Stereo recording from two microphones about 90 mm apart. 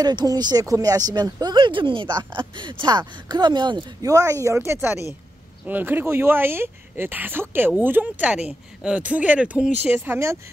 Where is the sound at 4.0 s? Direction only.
35° right (ahead or behind).